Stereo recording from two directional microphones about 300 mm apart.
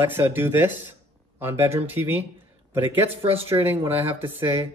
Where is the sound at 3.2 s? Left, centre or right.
Centre.